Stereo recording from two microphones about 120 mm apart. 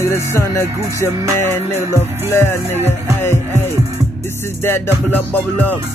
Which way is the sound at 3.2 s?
20° left (ahead or behind).